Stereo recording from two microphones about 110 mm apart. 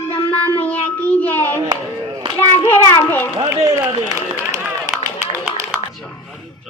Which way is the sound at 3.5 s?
30° right (ahead or behind).